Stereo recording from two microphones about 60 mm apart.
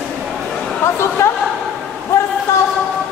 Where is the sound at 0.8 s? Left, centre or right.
Left.